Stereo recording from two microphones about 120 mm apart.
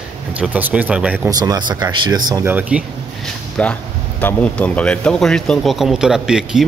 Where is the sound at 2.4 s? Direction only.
15° right (ahead or behind).